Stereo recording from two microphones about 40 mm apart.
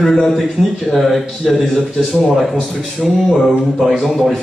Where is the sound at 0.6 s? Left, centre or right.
Centre.